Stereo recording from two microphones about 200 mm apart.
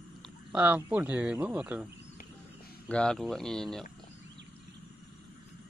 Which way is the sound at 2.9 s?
5° left (ahead or behind).